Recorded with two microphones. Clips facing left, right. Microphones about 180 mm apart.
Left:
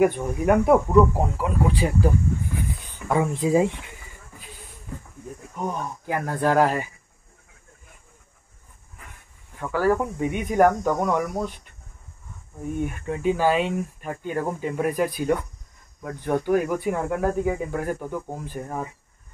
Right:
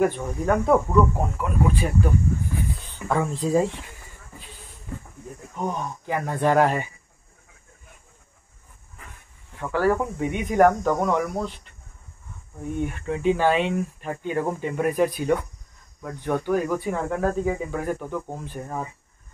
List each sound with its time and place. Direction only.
0.0 s speech: 10° left (ahead or behind)
1.3 s speech: 30° left (ahead or behind)
2.6 s a sound: 10° left (ahead or behind)
5.7 s speech: 5° left (ahead or behind)
9.6 s speech: 5° left (ahead or behind)
12.7 s speech: 5° left (ahead or behind)